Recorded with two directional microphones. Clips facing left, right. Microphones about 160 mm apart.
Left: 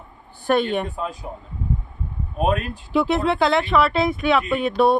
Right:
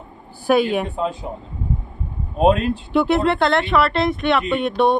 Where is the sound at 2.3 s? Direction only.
30° right (ahead or behind).